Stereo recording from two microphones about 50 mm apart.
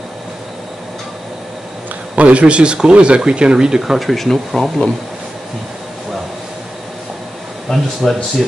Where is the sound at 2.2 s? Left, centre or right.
Right; by 4.7 s centre.